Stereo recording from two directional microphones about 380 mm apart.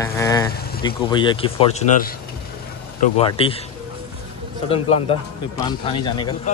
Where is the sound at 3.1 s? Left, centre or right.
Centre.